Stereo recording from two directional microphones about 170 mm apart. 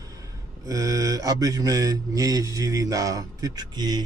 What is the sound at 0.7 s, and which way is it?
Speech, 20° right (ahead or behind).